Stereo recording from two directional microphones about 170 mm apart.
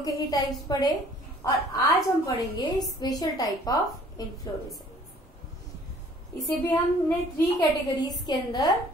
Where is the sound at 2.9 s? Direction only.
20° left (ahead or behind).